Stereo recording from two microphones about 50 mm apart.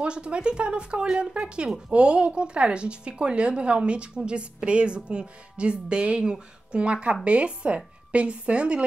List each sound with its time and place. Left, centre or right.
0.0 s a woman's voice: right